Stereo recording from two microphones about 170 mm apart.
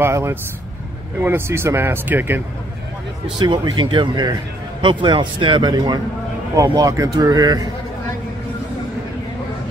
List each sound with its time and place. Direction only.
0.0 s speech: 15° right (ahead or behind)
3.3 s speech: 25° right (ahead or behind)